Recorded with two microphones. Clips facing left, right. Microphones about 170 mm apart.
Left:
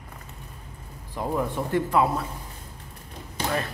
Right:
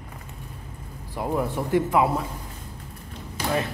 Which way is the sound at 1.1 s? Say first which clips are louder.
Right 1 dB; 10° right (ahead or behind).